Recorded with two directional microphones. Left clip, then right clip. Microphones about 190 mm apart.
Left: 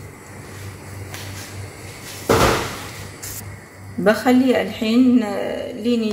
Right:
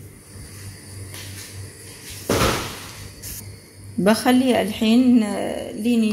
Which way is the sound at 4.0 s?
50° right (ahead or behind).